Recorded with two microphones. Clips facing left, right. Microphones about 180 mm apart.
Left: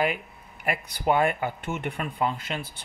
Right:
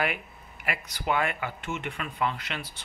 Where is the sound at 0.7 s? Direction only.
35° left (ahead or behind).